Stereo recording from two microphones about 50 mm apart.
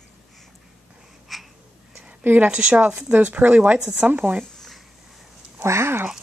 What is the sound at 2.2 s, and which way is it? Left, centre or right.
Speech, right.